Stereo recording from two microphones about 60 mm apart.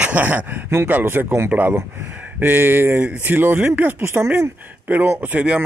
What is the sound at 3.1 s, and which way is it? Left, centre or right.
Speech, right.